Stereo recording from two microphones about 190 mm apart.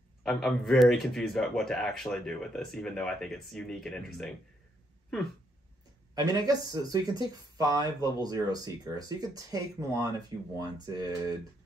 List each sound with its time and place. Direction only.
0.2 s a man's voice: centre (ahead or behind)
6.1 s speech: 20° right (ahead or behind)